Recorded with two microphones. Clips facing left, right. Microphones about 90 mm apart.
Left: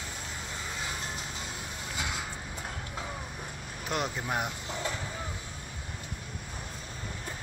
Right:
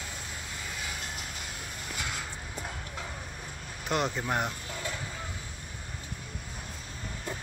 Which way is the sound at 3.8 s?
5° left (ahead or behind).